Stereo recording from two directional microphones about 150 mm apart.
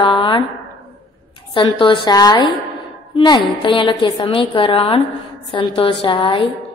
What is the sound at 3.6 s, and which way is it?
A woman's voice, 35° left (ahead or behind).